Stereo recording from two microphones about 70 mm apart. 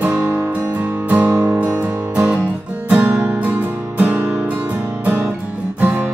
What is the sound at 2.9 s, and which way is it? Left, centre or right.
Music, right.